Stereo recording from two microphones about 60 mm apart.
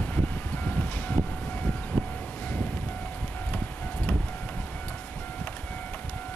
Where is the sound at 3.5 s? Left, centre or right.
Left.